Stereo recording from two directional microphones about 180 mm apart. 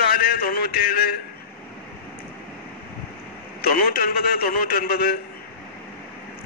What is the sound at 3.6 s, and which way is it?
Speech, 55° left (ahead or behind).